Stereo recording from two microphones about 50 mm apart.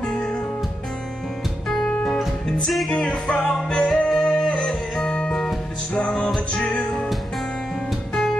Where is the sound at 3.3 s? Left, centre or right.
Centre.